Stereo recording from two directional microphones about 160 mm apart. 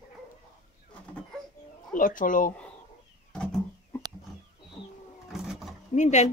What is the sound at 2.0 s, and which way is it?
Speech, 60° left (ahead or behind).